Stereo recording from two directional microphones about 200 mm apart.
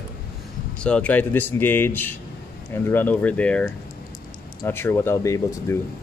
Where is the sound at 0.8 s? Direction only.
5° left (ahead or behind).